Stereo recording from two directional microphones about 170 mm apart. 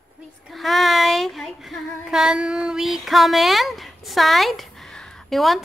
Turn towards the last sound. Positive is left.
turn(degrees=0)  # may be behind; listen again after turning